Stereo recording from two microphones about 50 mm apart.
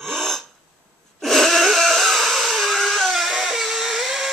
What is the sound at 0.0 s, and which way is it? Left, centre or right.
Gasp, centre.